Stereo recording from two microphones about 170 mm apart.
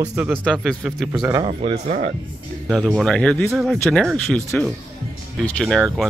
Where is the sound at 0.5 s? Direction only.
Centre (ahead or behind).